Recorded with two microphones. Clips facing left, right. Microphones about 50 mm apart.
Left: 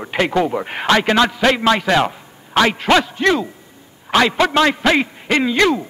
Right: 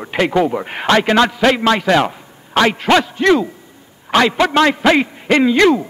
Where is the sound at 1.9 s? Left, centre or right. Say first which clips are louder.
Right 2 dB; centre.